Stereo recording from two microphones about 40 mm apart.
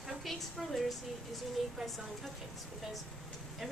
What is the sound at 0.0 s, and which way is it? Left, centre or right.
A woman's voice, centre.